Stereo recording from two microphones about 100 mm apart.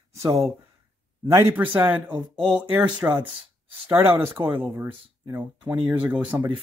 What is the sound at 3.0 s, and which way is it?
Speech, 20° right (ahead or behind).